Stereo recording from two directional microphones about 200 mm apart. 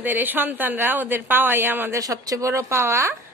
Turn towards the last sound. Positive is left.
turn(degrees=-15)  # may be behind; listen again after turning